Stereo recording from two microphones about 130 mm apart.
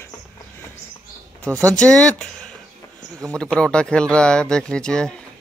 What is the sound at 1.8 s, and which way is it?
Speech, 5° left (ahead or behind).